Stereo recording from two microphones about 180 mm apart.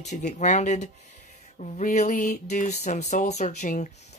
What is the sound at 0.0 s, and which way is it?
Speech, 40° left (ahead or behind).